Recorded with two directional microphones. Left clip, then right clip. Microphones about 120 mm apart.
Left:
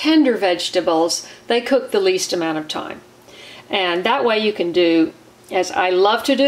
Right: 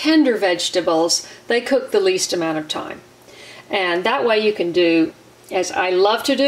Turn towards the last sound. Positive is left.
turn(degrees=-5)  # may be behind; listen again after turning